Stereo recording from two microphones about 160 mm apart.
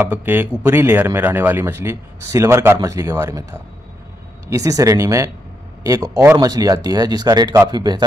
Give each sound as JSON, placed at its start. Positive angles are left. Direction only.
{"t": 0.0, "sound": "speech", "side_deg": -10}
{"t": 4.5, "sound": "speech", "side_deg": -20}